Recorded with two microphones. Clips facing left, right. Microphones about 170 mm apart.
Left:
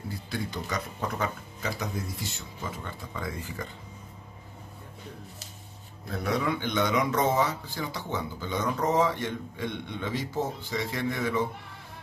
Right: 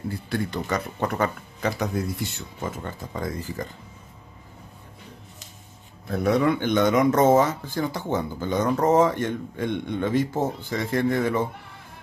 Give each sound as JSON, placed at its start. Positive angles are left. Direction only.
{"t": 0.1, "sound": "speech", "side_deg": -60}
{"t": 6.1, "sound": "speech", "side_deg": -55}